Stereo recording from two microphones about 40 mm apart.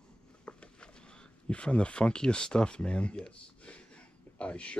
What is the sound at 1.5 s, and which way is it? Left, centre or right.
Speech, left.